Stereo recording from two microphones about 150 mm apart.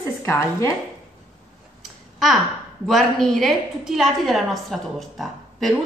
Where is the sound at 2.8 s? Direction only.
Centre (ahead or behind).